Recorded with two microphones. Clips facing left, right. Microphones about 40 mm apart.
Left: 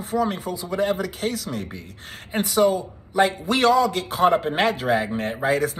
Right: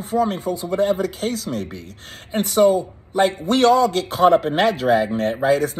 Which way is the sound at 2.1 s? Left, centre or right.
Left.